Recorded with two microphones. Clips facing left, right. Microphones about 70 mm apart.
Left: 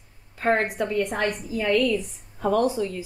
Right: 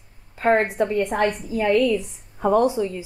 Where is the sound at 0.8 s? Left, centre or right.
Right.